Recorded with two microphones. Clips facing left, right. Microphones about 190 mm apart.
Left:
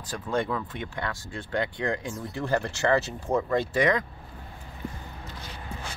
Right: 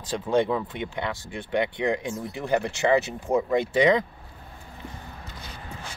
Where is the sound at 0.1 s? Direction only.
20° right (ahead or behind).